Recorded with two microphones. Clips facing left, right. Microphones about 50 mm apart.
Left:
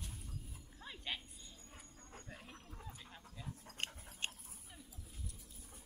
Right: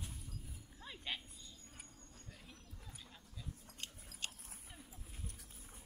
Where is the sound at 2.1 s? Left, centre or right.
Left.